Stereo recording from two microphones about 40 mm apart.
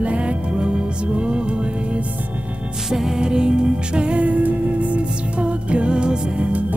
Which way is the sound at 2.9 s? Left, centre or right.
Centre.